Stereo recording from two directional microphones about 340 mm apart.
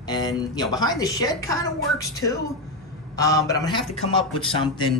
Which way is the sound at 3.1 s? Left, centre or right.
Centre.